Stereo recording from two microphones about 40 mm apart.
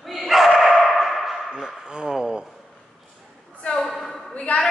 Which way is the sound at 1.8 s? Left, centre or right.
Centre.